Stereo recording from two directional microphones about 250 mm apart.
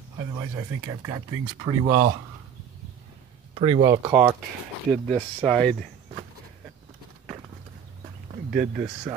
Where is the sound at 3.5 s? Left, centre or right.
Right.